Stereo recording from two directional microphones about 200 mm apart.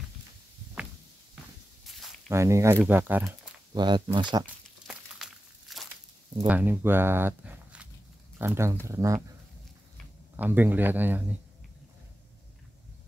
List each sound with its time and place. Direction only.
2.2 s speech: 15° right (ahead or behind)
3.7 s speech: 20° right (ahead or behind)
4.8 s crumpling: centre (ahead or behind)
6.3 s speech: 10° right (ahead or behind)
10.3 s speech: 10° right (ahead or behind)